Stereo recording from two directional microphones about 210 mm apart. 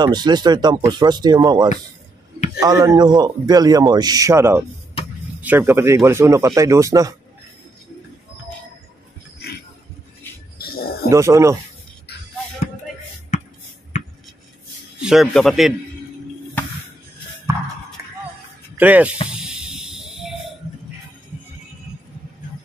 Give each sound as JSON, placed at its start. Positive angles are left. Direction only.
{"t": 0.0, "sound": "a man's voice", "side_deg": -20}
{"t": 10.6, "sound": "a sound", "side_deg": 45}
{"t": 11.1, "sound": "a man's voice", "side_deg": -15}
{"t": 13.3, "sound": "beatboxing", "side_deg": 35}
{"t": 15.0, "sound": "a man's voice", "side_deg": 0}
{"t": 18.8, "sound": "a man's voice", "side_deg": -10}
{"t": 19.3, "sound": "a sound", "side_deg": -5}